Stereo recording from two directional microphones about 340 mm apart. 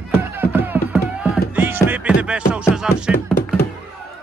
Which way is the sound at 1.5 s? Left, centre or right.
Centre.